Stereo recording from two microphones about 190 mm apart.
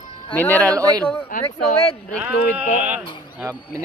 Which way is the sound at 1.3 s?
45° left (ahead or behind).